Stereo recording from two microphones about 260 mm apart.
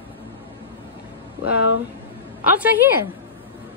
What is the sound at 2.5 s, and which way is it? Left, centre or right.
Speech, centre.